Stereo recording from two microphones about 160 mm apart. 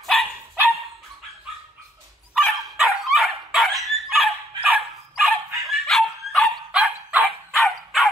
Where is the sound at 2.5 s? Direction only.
5° right (ahead or behind).